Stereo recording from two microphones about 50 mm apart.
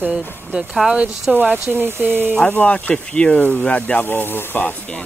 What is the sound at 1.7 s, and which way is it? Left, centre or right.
Speech, right.